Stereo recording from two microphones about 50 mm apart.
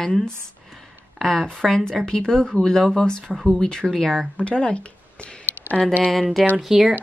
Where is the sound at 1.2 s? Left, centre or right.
Centre.